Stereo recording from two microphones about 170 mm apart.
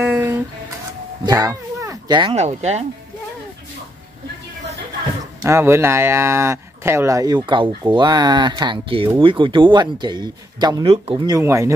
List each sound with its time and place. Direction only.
0.0 s a sound: 5° right (ahead or behind)
1.2 s cat: 20° right (ahead or behind)
2.3 s speech: 40° right (ahead or behind)
5.5 s speech: 15° right (ahead or behind)